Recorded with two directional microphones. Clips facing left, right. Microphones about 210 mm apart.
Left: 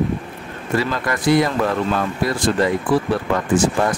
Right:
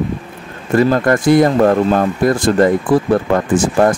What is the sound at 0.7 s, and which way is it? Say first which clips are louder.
Speech: right 9 dB; 45° right (ahead or behind).